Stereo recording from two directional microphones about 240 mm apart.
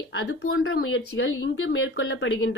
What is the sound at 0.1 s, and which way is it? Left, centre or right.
A woman's voice, left.